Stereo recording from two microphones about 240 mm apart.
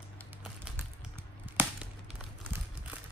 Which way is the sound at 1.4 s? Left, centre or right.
Centre.